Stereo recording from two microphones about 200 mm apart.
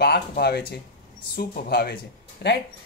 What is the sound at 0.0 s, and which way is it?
Speech, 55° left (ahead or behind).